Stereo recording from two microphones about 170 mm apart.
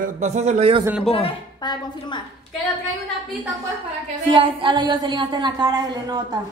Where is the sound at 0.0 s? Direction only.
45° right (ahead or behind).